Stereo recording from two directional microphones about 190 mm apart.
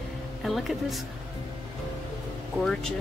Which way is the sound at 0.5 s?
Centre (ahead or behind).